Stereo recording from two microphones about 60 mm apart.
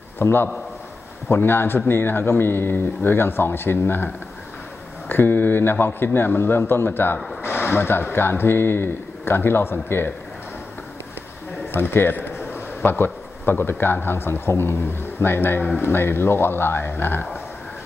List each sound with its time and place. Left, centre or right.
0.2 s speech: left
11.7 s a man's voice: left